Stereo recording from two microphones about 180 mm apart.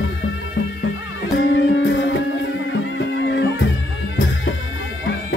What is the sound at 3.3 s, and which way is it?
Music, 80° left.